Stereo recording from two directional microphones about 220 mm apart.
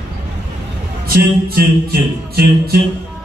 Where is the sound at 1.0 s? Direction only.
40° right (ahead or behind).